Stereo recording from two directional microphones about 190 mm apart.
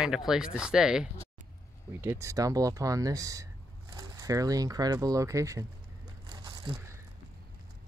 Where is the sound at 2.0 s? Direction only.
15° right (ahead or behind).